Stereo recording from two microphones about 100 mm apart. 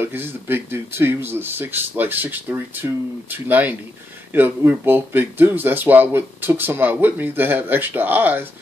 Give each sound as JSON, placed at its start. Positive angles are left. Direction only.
{"t": 0.0, "sound": "speech", "side_deg": -20}